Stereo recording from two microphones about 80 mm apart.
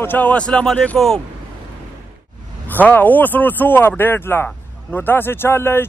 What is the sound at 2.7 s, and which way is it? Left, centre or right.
Speech, left.